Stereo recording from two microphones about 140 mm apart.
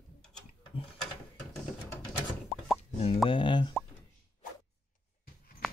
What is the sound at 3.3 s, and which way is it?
Plop, 35° left (ahead or behind).